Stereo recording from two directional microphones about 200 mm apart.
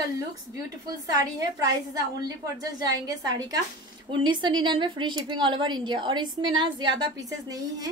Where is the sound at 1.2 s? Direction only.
20° right (ahead or behind).